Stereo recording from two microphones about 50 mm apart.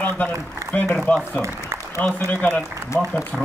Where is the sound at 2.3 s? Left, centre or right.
Left.